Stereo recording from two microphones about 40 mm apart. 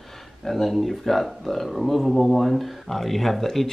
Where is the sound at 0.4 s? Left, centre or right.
Centre.